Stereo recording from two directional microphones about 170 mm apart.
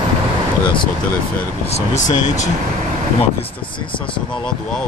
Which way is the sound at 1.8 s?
45° left (ahead or behind).